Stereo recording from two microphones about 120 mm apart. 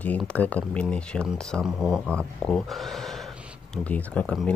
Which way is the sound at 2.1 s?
10° left (ahead or behind).